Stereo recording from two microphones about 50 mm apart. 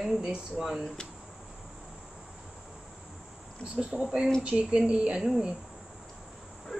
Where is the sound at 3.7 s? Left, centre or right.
Centre.